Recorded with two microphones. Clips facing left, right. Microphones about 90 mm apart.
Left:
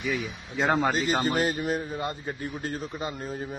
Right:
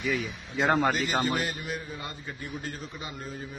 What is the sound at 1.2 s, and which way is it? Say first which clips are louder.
A man's voice: left 4 dB; 40° left (ahead or behind).